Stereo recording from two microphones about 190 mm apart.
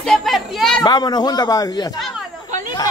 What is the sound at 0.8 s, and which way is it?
A man's voice, 20° left (ahead or behind).